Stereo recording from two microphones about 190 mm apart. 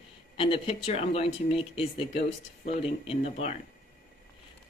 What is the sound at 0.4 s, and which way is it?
Speech, 30° left (ahead or behind).